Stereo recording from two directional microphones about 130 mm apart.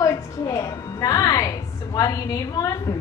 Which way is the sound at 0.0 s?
25° left (ahead or behind).